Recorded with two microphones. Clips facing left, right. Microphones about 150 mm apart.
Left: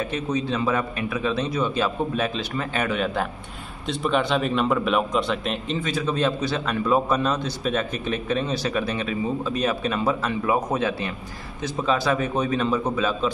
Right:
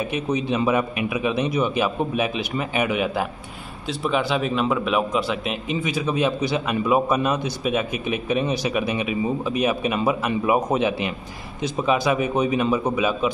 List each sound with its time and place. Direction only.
0.0 s a man's voice: 15° right (ahead or behind)